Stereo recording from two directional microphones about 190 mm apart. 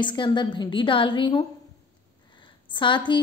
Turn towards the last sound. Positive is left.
turn(degrees=25)  # may be behind; listen again after turning